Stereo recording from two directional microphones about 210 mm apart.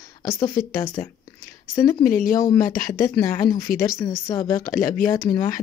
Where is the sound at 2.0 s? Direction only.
40° left (ahead or behind).